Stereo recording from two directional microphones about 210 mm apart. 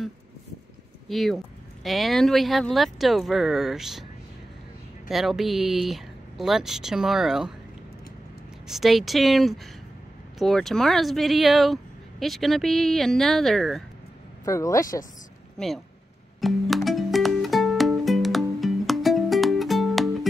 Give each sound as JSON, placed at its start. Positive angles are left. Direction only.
{"t": 1.0, "sound": "speech", "side_deg": 0}
{"t": 5.1, "sound": "speech", "side_deg": 0}
{"t": 8.6, "sound": "speech", "side_deg": 0}
{"t": 14.4, "sound": "speech", "side_deg": 15}
{"t": 15.5, "sound": "speech", "side_deg": 0}
{"t": 16.3, "sound": "music", "side_deg": 0}